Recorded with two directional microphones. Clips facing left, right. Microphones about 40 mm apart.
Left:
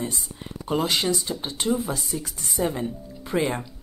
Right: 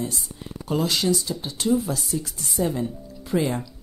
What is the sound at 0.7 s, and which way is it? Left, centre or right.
Speech, left.